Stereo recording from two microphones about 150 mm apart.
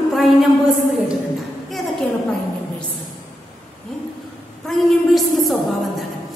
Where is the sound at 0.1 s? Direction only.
Centre (ahead or behind).